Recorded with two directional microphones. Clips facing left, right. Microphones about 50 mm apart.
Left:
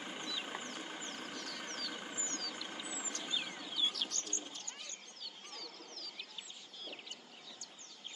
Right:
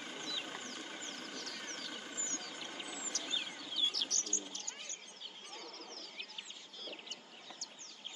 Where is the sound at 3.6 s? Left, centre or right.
Centre.